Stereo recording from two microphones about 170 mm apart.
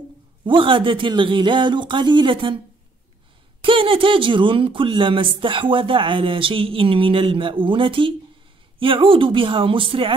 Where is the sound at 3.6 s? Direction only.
30° right (ahead or behind).